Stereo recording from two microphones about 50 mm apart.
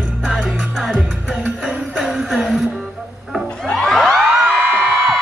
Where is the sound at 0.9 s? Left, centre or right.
Right.